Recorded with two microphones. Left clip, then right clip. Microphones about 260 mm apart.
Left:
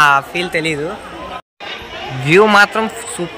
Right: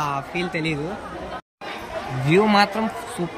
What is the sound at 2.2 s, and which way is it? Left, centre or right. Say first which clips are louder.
Speech: left 8 dB; centre.